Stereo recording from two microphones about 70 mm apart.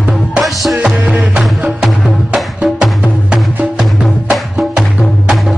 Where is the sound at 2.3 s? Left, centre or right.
Centre.